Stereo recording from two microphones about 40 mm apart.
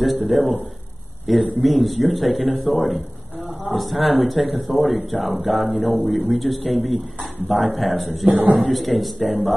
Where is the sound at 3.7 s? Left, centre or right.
Centre.